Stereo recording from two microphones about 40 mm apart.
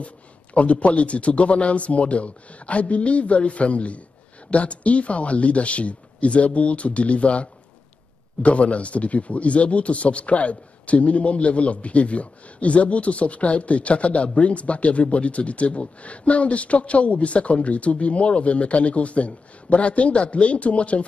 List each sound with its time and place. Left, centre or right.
0.6 s speech: left